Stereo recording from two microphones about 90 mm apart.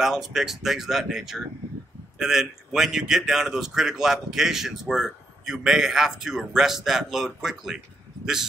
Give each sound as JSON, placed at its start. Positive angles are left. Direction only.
{"t": 0.0, "sound": "a man's voice", "side_deg": -5}